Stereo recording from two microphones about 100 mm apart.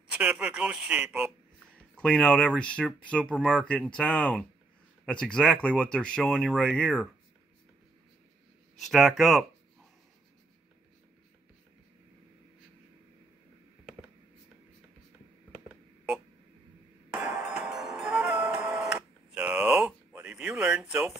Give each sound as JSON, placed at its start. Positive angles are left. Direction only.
{"t": 0.1, "sound": "speech", "side_deg": -10}
{"t": 2.0, "sound": "speech", "side_deg": 10}
{"t": 8.7, "sound": "speech", "side_deg": 0}
{"t": 17.1, "sound": "music", "side_deg": -10}
{"t": 19.3, "sound": "a sound", "side_deg": -15}
{"t": 20.3, "sound": "a sound", "side_deg": -5}